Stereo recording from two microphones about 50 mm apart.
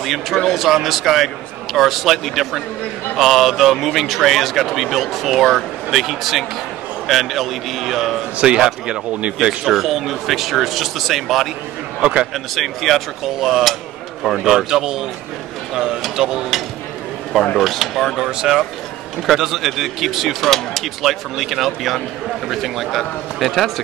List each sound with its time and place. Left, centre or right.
0.0 s speech: centre
8.4 s speech: centre
9.7 s speech: centre
12.0 s speech: centre
12.5 s speech: centre
17.6 s speech: centre